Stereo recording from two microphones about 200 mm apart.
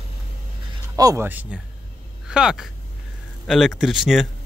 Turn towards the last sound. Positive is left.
turn(degrees=0)  # may be behind; listen again after turning